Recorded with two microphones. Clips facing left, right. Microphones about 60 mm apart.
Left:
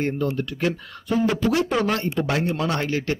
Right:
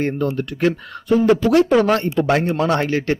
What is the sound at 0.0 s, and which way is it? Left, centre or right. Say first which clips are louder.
Speech: right 3 dB; right.